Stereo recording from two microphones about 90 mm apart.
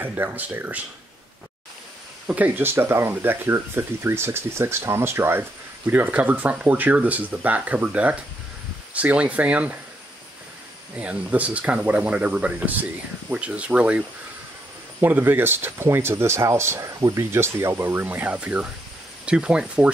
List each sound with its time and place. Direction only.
0.0 s speech: 20° right (ahead or behind)
2.2 s speech: 20° right (ahead or behind)
11.0 s speech: 15° right (ahead or behind)
18.0 s speech: 15° right (ahead or behind)